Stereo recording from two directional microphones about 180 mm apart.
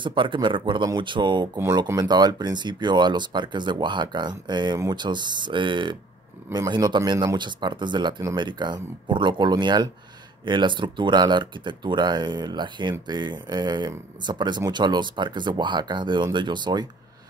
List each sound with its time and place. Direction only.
0.0 s speech: 25° right (ahead or behind)